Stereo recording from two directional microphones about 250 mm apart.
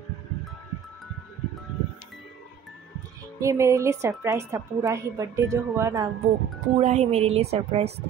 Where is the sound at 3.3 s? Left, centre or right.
Centre.